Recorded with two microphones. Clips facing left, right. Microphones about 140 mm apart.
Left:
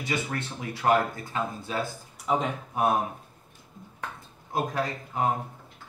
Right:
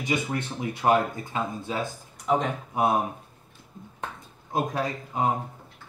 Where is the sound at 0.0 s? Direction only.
20° right (ahead or behind).